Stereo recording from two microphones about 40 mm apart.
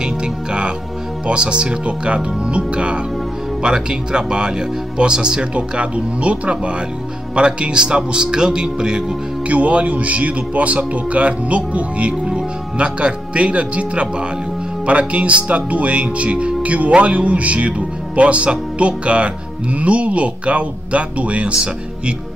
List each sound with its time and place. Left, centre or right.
0.0 s music: right
1.2 s speech: right
5.5 s speech: right
9.5 s speech: right
12.3 s speech: right